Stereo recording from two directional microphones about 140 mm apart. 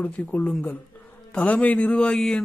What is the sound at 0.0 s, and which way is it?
A man's voice, 10° left (ahead or behind).